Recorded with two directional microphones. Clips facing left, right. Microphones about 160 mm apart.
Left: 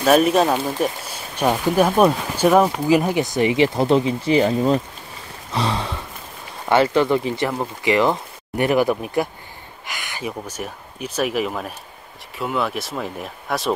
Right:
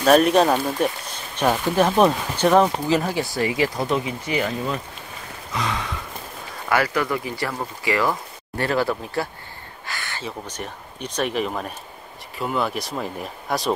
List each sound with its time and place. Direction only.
0.0 s speech: centre (ahead or behind); by 4.7 s 30° left (ahead or behind)
5.5 s a sound: 30° left (ahead or behind)
6.7 s speech: 25° left (ahead or behind); by 13.7 s centre (ahead or behind)